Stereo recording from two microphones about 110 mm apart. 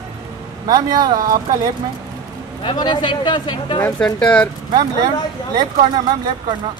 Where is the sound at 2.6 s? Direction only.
45° left (ahead or behind).